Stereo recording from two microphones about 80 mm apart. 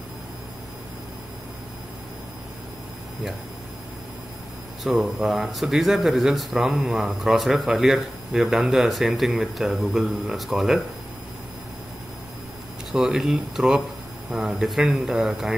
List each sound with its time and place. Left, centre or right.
4.8 s speech: centre
12.9 s speech: centre